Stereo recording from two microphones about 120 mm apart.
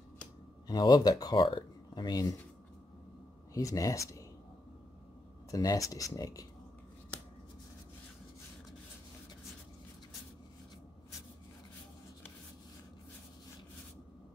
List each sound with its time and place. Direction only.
0.7 s speech: 35° left (ahead or behind)
3.5 s speech: 30° left (ahead or behind)
5.5 s speech: 30° left (ahead or behind)